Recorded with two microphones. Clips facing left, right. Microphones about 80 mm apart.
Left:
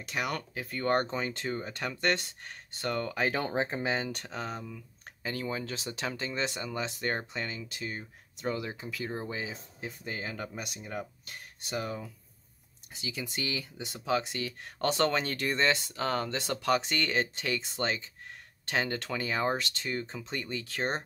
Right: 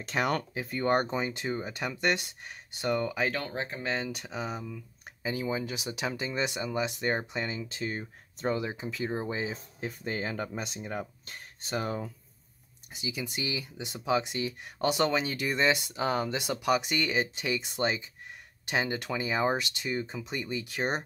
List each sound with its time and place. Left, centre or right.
0.0 s speech: right
0.6 s speech: right
3.3 s speech: centre
3.9 s speech: centre; by 8.5 s right
8.5 s speech: right
9.5 s speech: right
12.9 s speech: centre